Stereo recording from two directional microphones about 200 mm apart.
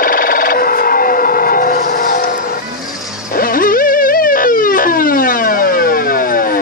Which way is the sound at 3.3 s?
45° left (ahead or behind).